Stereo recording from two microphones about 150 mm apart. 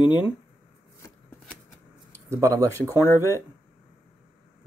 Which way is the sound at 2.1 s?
20° right (ahead or behind).